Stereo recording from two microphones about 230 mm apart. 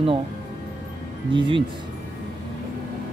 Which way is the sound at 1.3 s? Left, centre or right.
Right.